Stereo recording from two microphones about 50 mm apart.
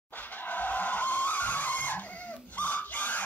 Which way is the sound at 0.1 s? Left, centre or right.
Left.